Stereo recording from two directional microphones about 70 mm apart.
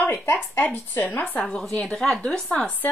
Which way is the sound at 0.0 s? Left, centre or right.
Left.